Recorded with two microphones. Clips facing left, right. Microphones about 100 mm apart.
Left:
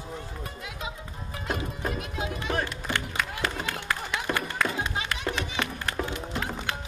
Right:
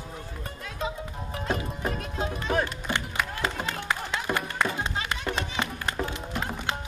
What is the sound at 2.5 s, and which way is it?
Music, 15° right (ahead or behind).